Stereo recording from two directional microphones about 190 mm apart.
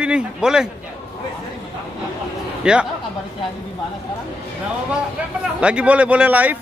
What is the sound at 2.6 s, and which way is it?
Speech, 5° right (ahead or behind).